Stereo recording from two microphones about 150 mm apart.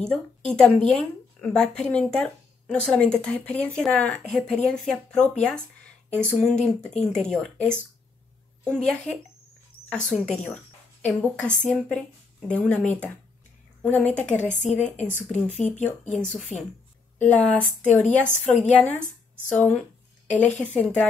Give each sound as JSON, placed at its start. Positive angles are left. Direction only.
{"t": 0.0, "sound": "a woman's voice", "side_deg": 5}
{"t": 14.5, "sound": "speech", "side_deg": 55}
{"t": 15.2, "sound": "speech", "side_deg": 5}
{"t": 17.2, "sound": "a woman's voice", "side_deg": 10}